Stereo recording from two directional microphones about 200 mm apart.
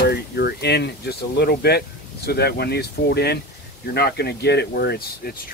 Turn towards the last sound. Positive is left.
turn(degrees=50)  # may be behind; listen again after turning